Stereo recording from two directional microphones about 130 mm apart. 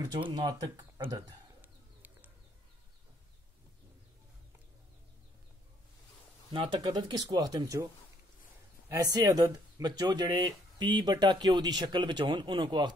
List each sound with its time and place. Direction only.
0.3 s speech: 30° right (ahead or behind)
1.6 s bird: 15° right (ahead or behind)
6.5 s speech: 40° right (ahead or behind)
8.9 s speech: 30° right (ahead or behind)